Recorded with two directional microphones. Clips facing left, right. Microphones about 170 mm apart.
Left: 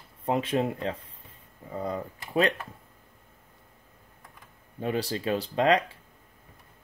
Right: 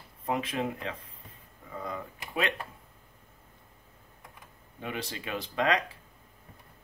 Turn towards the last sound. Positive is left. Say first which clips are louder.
# left 5 dB
turn(degrees=30)  # may be behind; listen again after turning